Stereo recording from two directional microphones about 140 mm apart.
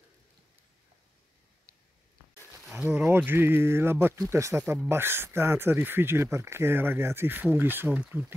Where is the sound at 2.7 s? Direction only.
10° right (ahead or behind).